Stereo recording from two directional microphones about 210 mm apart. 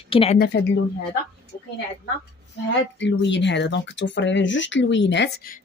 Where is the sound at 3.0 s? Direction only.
60° left (ahead or behind).